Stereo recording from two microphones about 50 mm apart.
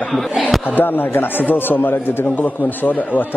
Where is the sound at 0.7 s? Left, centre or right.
Left.